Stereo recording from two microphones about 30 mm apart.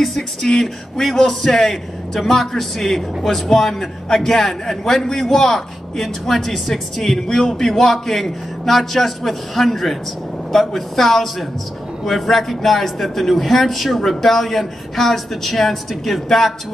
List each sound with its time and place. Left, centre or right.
0.4 s a man's voice: left